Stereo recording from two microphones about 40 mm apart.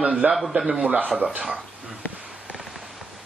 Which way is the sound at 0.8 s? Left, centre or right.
Right.